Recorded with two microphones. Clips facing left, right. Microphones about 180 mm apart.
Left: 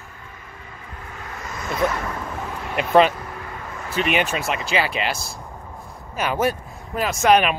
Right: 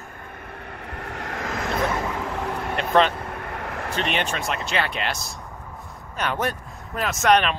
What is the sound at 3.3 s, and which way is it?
Vehicle, 65° right (ahead or behind).